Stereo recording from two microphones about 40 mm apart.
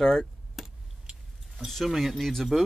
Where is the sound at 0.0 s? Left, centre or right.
Centre.